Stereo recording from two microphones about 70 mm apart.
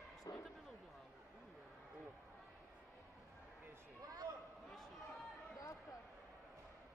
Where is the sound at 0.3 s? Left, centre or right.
Left.